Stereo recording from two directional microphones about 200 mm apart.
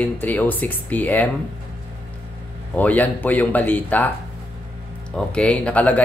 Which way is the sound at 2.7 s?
10° left (ahead or behind).